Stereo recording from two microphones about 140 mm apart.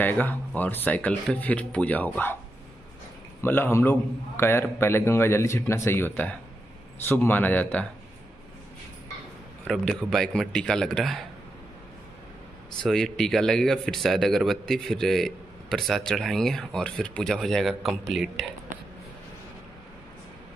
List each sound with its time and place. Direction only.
0.0 s a man's voice: 15° left (ahead or behind)
3.3 s a man's voice: 15° left (ahead or behind)
9.7 s speech: centre (ahead or behind)
12.8 s speech: 5° left (ahead or behind)